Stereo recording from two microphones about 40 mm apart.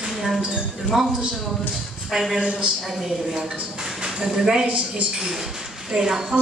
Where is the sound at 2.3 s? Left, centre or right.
Centre.